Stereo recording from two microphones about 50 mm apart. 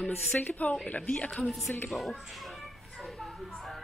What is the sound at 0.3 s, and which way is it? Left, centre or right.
Speech, left.